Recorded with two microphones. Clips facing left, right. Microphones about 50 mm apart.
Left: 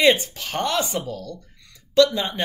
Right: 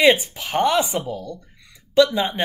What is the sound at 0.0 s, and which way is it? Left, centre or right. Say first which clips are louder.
Speech: right 2 dB; centre.